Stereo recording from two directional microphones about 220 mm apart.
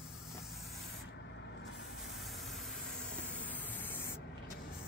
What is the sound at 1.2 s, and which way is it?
Vehicle, 55° left (ahead or behind).